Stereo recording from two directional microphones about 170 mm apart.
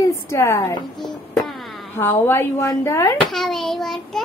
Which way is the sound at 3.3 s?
Centre (ahead or behind).